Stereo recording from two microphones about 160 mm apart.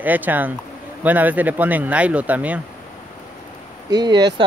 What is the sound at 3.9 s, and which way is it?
Speech, 25° right (ahead or behind).